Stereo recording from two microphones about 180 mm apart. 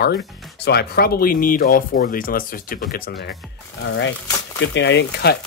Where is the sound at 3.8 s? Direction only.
90° left.